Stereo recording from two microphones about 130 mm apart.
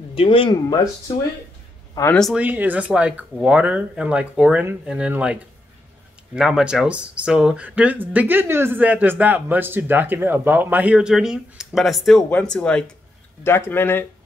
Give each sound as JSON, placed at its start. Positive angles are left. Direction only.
{"t": 0.1, "sound": "speech", "side_deg": 45}
{"t": 2.3, "sound": "speech", "side_deg": -15}
{"t": 13.4, "sound": "speech", "side_deg": 20}